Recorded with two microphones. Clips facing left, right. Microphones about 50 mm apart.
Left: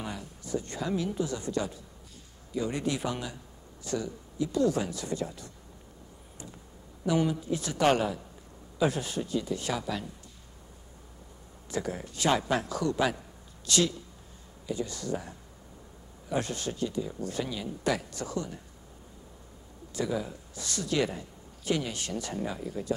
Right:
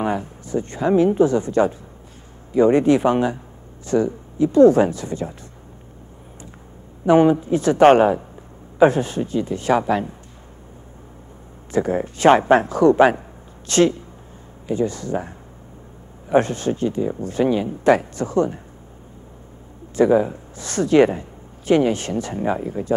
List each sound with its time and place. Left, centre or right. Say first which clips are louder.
0.0 s speech: right 15 dB; right
7.1 s speech: right 13 dB; right
11.7 s speech: right 13 dB; right
20.0 s speech: right 16 dB; right